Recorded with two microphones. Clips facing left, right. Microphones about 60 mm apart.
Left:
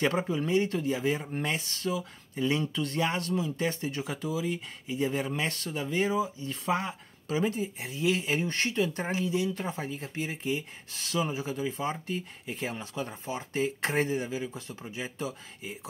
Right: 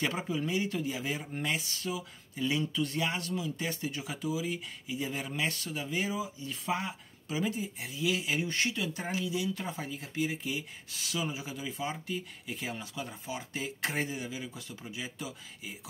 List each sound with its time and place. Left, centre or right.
0.4 s speech: left